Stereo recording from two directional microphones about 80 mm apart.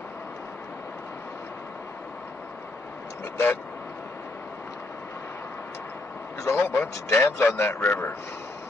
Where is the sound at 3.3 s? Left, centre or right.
Left.